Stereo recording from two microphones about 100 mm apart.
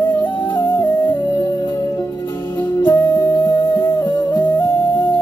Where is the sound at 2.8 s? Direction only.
30° left (ahead or behind).